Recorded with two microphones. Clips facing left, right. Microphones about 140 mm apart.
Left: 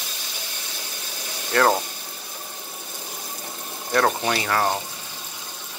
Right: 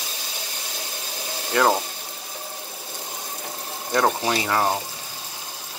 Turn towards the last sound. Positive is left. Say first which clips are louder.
# right 1 dB
turn(degrees=-15)  # may be behind; listen again after turning